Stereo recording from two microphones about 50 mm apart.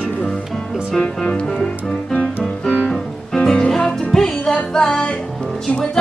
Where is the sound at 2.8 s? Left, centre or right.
Centre.